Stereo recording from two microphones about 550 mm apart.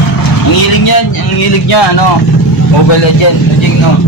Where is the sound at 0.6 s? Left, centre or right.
Left.